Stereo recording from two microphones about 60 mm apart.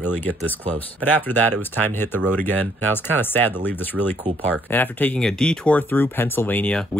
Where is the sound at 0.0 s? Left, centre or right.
Left.